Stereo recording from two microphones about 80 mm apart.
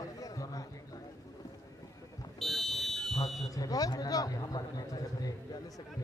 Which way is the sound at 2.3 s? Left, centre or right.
Centre.